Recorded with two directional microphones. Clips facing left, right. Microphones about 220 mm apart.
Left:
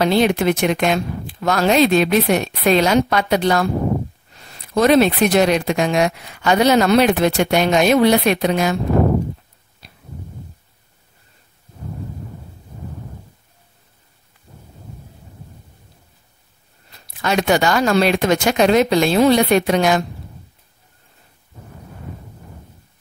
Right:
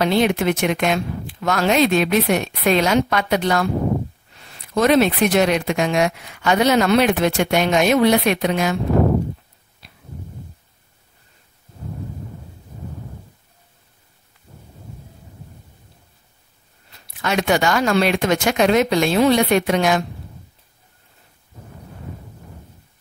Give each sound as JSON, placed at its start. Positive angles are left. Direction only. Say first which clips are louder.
{"t": 0.0, "sound": "speech", "louder": "left 2 dB", "side_deg": 35}
{"t": 9.8, "sound": "a sound", "louder": "left 2 dB", "side_deg": 40}
{"t": 17.0, "sound": "speech", "louder": "left 2 dB", "side_deg": 35}